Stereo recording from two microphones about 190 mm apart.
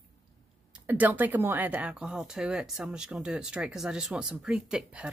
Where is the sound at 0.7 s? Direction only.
10° right (ahead or behind).